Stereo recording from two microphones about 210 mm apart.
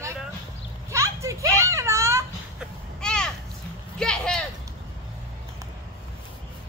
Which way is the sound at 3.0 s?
5° left (ahead or behind).